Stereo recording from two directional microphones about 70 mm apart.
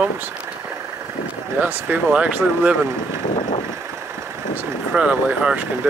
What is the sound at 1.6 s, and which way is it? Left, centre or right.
Speech, right.